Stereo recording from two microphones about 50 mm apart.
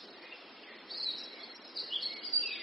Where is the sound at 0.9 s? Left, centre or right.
Centre.